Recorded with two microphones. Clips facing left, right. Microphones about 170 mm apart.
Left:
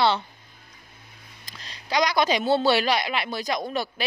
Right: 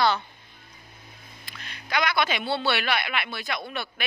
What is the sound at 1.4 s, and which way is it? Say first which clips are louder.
A man's voice: left 3 dB; 35° left (ahead or behind).